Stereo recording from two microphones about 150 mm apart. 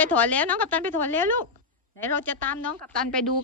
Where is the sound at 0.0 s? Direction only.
10° left (ahead or behind).